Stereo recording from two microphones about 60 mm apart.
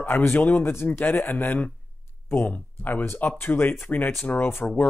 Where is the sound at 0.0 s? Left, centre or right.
Left.